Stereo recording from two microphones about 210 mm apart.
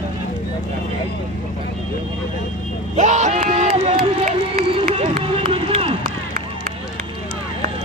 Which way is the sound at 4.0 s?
45° right (ahead or behind).